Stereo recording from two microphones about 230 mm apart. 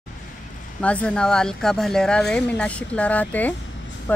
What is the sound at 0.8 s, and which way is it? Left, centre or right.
Speech, centre.